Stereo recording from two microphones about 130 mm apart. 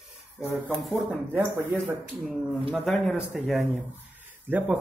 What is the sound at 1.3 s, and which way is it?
Speech, 15° right (ahead or behind).